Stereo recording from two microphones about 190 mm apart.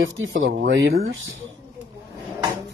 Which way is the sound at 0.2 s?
75° right (ahead or behind).